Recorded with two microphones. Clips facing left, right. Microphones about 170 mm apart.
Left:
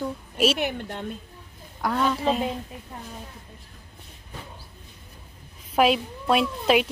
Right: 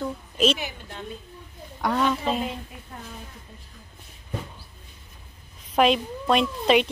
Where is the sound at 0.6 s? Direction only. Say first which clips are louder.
Left 7 dB; 60° left (ahead or behind).